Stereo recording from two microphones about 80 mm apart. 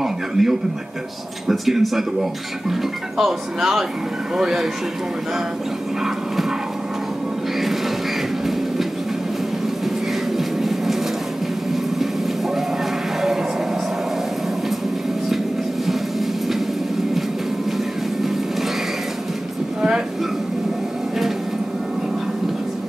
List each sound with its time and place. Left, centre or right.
0.0 s a sound: centre
1.5 s speech: centre
3.2 s speech: centre
10.3 s vehicle: centre